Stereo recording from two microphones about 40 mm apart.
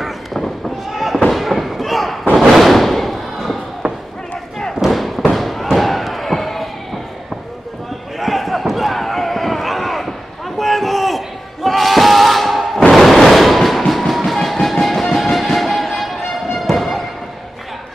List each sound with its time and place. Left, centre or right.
0.0 s run: centre
0.9 s fireworks: centre
1.3 s thump: centre
3.8 s a sound: right
4.9 s thump: centre
5.3 s fireworks: centre
5.7 s a sound: centre
8.2 s basketball bounce: centre
12.9 s train: centre
15.4 s music: centre